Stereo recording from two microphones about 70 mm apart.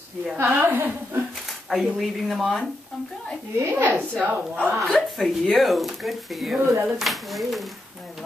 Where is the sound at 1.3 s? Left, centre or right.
Centre.